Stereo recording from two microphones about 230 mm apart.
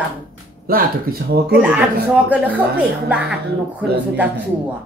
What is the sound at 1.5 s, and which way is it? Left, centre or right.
Speech, centre.